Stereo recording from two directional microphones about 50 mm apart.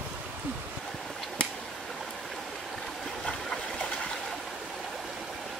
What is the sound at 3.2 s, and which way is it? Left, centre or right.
Stream, centre.